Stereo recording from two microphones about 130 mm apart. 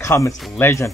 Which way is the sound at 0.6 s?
20° left (ahead or behind).